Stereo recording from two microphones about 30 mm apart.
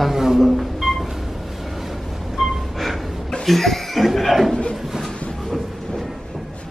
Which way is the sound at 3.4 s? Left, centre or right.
Centre.